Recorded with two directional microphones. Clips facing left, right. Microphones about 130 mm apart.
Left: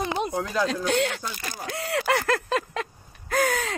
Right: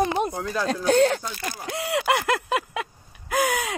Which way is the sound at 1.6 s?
15° right (ahead or behind).